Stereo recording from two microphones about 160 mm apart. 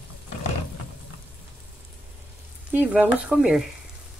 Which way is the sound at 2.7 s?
10° right (ahead or behind).